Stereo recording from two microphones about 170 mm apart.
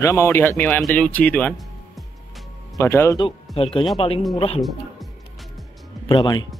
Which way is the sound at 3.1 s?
35° left (ahead or behind).